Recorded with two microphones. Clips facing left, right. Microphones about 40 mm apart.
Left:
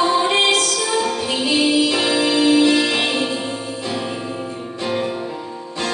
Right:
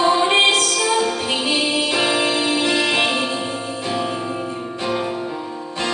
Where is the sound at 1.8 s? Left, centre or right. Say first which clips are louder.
Left 1 dB; right; by 3.3 s centre.